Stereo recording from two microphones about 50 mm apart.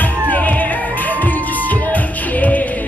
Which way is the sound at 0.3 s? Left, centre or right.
Left.